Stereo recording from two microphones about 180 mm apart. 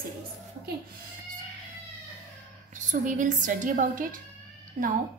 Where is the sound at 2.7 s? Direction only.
45° right (ahead or behind).